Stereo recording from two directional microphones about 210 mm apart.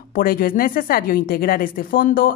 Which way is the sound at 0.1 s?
45° left (ahead or behind).